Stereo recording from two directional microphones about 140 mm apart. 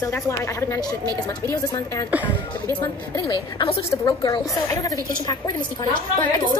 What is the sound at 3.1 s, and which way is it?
A woman's voice, 35° left (ahead or behind).